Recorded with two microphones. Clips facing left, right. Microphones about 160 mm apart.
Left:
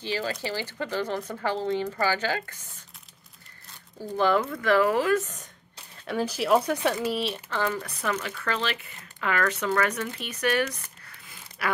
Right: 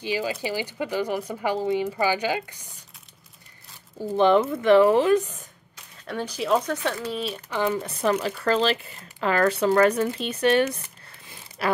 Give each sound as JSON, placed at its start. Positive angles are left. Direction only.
{"t": 0.0, "sound": "speech", "side_deg": -15}
{"t": 4.1, "sound": "speech", "side_deg": -25}
{"t": 5.2, "sound": "speech", "side_deg": -10}
{"t": 6.0, "sound": "speech", "side_deg": 5}
{"t": 7.2, "sound": "speech", "side_deg": 0}
{"t": 7.4, "sound": "speech", "side_deg": -15}
{"t": 11.2, "sound": "a sound", "side_deg": -30}